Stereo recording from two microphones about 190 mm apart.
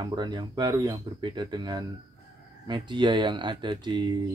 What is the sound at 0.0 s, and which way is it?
Speech, 20° right (ahead or behind).